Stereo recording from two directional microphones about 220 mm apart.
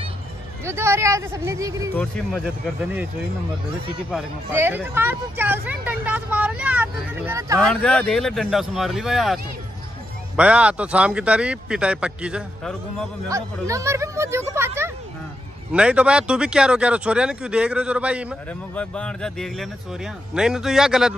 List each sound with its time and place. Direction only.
0.7 s speech: 10° right (ahead or behind)
2.0 s speech: centre (ahead or behind)
4.1 s speech: 5° right (ahead or behind)
7.5 s speech: 5° left (ahead or behind)
18.8 s speech: 5° left (ahead or behind)